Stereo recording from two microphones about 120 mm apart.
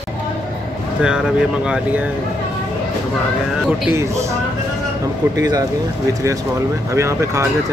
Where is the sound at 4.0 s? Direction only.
25° right (ahead or behind).